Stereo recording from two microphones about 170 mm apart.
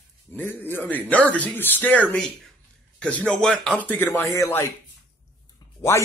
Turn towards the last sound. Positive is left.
turn(degrees=15)  # may be behind; listen again after turning